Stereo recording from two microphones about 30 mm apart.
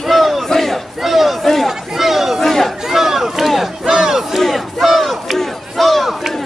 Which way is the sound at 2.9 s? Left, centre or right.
Centre.